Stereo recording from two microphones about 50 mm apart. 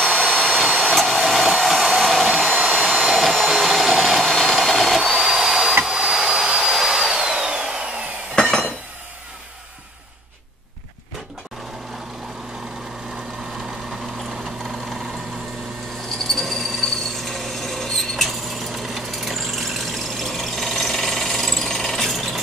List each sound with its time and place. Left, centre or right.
0.1 s vacuum cleaner: right
0.9 s a sound: centre
1.9 s hair dryer: centre
3.0 s vacuum cleaner: centre
3.9 s a sound: centre
5.9 s vacuum cleaner: centre
6.6 s a sound: centre
14.4 s vehicle: centre
16.1 s tools: centre